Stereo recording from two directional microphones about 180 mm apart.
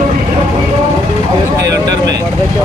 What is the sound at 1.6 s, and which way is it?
Vehicle, 20° right (ahead or behind).